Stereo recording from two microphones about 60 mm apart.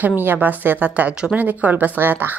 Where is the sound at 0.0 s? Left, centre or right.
Right.